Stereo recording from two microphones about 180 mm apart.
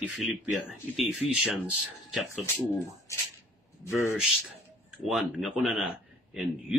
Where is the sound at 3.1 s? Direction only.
15° left (ahead or behind).